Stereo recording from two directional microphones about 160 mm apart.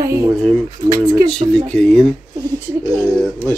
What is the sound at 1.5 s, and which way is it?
Mantra, 5° left (ahead or behind).